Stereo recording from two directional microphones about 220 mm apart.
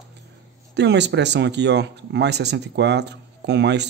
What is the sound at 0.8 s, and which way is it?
Speech, 50° right (ahead or behind).